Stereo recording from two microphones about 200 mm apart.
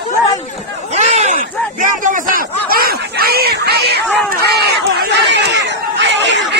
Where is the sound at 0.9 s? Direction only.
35° right (ahead or behind); by 4.0 s 55° right (ahead or behind).